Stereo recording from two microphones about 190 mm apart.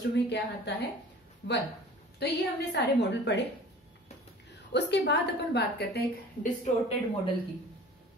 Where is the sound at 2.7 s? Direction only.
65° left (ahead or behind).